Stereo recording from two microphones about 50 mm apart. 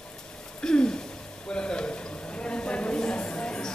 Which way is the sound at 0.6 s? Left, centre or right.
Centre.